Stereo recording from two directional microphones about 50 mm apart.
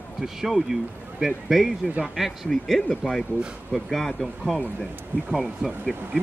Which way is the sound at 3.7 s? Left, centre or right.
Centre.